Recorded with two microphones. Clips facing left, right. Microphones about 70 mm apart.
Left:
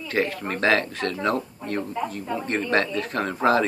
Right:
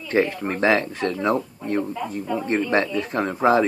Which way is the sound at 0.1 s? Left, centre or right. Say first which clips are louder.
Right 4 dB; centre.